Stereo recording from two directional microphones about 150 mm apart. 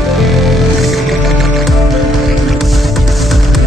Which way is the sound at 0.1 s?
Centre (ahead or behind).